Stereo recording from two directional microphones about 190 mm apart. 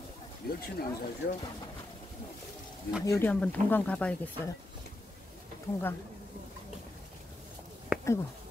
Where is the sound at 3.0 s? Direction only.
15° left (ahead or behind).